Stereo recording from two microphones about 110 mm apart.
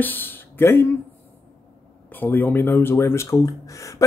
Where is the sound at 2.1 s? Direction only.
20° left (ahead or behind).